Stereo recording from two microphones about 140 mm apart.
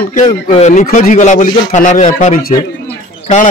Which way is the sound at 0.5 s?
55° left (ahead or behind).